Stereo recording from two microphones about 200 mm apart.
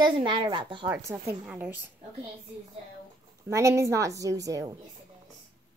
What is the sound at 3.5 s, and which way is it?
A woman's voice, 15° right (ahead or behind).